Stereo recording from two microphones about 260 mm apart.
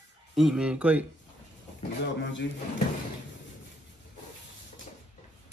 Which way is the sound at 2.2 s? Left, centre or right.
Left.